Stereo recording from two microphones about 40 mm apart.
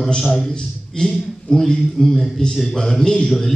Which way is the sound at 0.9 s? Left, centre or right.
Centre.